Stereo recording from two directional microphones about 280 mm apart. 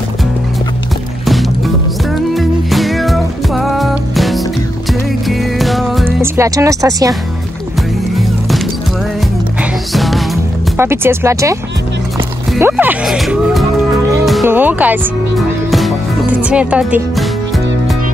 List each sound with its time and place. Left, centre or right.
2.3 s music: centre
9.6 s music: centre
10.8 s speech: centre
12.5 s speech: centre
15.7 s music: centre